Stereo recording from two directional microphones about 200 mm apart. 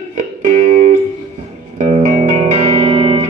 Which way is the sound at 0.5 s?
35° right (ahead or behind).